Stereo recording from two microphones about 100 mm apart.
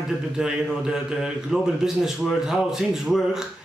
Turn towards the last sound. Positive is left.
turn(degrees=-5)  # may be behind; listen again after turning